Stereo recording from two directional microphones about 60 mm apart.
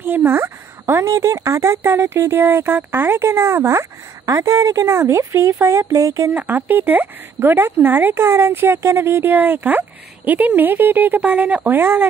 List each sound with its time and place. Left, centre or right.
0.0 s a sound: right
1.0 s speech: right
1.9 s speech: right
2.3 s speech: right
4.3 s speech: right
4.8 s speech: right
6.3 s speech: right